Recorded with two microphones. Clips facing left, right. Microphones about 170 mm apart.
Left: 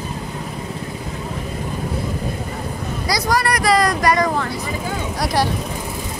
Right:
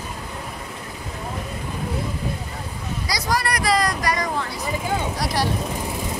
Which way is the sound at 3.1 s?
60° left (ahead or behind).